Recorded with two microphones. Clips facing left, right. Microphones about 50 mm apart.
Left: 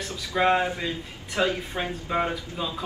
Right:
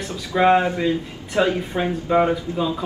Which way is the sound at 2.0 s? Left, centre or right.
Centre.